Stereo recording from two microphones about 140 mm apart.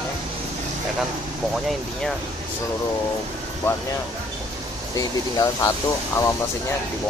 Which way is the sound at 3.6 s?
15° left (ahead or behind).